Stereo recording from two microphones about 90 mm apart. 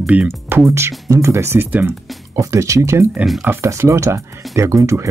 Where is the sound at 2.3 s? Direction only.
35° right (ahead or behind).